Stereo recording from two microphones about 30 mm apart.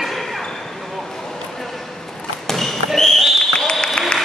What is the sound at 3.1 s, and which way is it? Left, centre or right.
Basketball bounce, centre.